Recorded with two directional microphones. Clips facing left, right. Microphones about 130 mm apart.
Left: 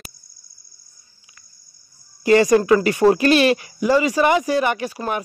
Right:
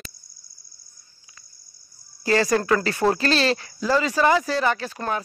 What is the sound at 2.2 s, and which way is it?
Speech, 20° left (ahead or behind).